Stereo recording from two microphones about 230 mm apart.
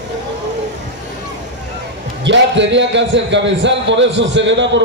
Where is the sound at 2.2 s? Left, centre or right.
Right.